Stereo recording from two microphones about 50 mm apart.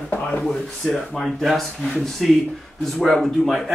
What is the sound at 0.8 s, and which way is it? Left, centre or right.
Speech, centre.